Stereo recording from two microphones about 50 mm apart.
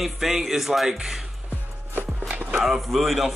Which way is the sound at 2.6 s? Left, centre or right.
Centre.